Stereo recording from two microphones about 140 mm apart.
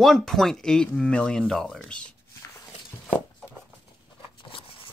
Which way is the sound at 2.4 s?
20° left (ahead or behind).